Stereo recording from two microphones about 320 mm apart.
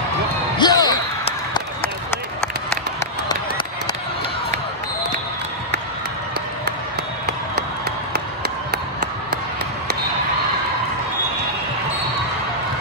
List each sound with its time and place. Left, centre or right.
0.6 s basketball bounce: centre